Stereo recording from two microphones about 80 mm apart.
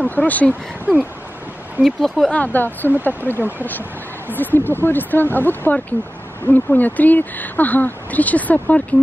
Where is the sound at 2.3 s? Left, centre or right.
Left.